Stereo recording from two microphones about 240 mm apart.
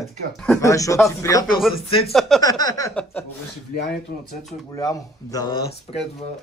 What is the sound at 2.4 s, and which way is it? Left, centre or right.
Speech, centre.